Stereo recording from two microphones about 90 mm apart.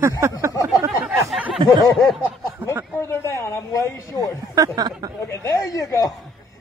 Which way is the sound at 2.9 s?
30° left (ahead or behind).